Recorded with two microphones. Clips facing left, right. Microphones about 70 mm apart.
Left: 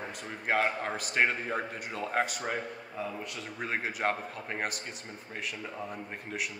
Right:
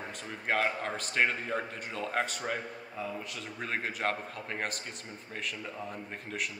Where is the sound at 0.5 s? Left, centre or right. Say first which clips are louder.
Left 1 dB; centre.